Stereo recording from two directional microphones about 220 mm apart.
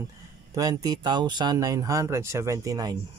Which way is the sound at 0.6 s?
15° right (ahead or behind).